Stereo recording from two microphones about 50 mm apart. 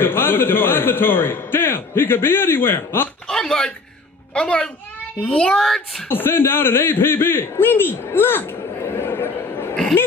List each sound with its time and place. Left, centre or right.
0.0 s speech: left
3.3 s a sound: centre
4.3 s a child's voice: centre
5.5 s speech: centre
6.0 s a man's voice: left